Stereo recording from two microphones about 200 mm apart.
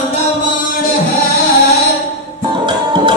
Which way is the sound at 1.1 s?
50° left (ahead or behind).